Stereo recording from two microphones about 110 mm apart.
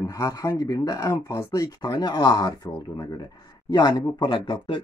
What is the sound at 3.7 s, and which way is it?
Speech, 35° left (ahead or behind).